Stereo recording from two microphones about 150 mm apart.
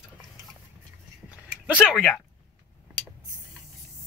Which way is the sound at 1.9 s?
Centre (ahead or behind).